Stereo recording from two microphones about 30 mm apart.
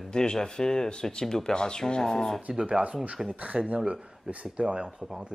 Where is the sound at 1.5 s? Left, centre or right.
Left.